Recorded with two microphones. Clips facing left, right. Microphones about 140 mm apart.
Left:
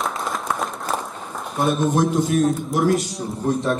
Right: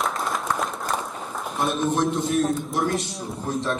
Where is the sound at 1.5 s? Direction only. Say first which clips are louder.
Left 4 dB; centre (ahead or behind).